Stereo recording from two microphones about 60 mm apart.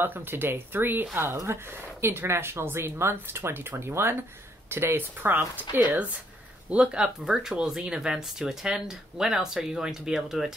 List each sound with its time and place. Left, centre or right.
0.0 s speech: right
1.3 s speech: right
6.7 s speech: centre